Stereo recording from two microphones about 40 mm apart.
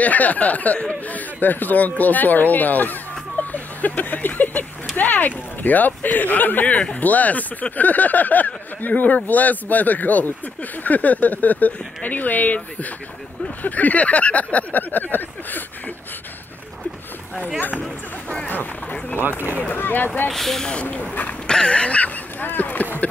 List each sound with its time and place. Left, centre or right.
0.0 s speech: left
17.6 s speech: left
19.1 s speech: right
19.7 s speech: left
20.2 s speech: centre
21.5 s dog: left
22.4 s speech: left